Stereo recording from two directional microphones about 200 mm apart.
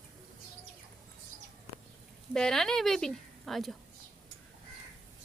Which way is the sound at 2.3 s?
Centre (ahead or behind).